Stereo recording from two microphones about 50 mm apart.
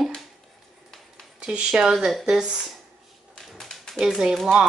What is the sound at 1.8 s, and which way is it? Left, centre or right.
Speech, centre.